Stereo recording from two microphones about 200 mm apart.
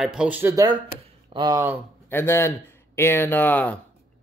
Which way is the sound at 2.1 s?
10° left (ahead or behind).